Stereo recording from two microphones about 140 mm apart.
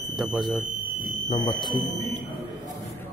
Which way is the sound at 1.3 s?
35° left (ahead or behind).